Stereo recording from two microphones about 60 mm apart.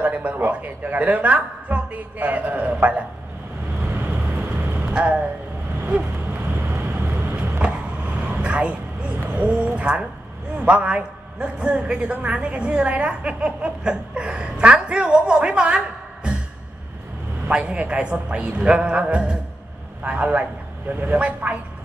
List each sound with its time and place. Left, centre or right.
0.0 s a woman's voice: right
3.8 s vehicle: right
4.1 s vehicle: right
4.9 s a woman's voice: right
6.4 s vehicle: right
7.6 s vehicle: right
9.3 s a man's voice: right
17.5 s a man's voice: centre